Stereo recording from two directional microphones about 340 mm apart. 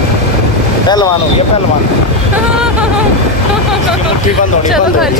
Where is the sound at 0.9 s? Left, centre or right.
Centre.